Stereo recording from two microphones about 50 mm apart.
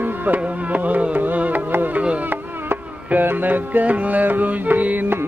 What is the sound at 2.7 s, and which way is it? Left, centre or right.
Music, right.